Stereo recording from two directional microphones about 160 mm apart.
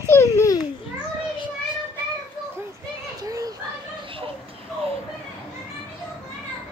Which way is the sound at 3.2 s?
20° right (ahead or behind).